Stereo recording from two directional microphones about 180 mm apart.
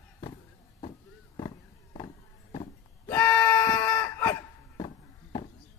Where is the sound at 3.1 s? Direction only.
15° left (ahead or behind).